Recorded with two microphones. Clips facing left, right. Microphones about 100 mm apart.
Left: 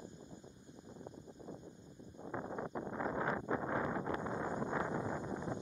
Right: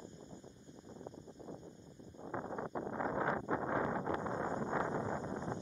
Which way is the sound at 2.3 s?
35° right (ahead or behind).